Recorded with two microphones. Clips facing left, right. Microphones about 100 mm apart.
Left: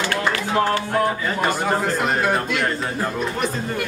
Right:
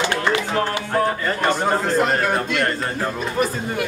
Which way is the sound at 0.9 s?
5° left (ahead or behind).